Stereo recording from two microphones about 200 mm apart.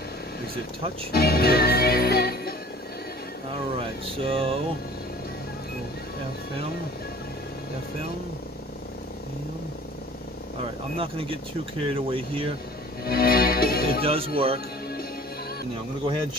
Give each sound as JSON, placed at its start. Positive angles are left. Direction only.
{"t": 1.1, "sound": "music", "side_deg": 50}
{"t": 4.2, "sound": "speech", "side_deg": -30}
{"t": 11.0, "sound": "speech", "side_deg": -30}
{"t": 13.0, "sound": "music", "side_deg": 50}
{"t": 14.0, "sound": "speech", "side_deg": -30}